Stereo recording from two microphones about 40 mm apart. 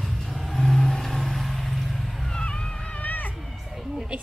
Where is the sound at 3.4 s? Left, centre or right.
Centre.